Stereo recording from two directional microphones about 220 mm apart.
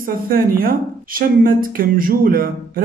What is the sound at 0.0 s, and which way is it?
A woman's voice, 40° right (ahead or behind).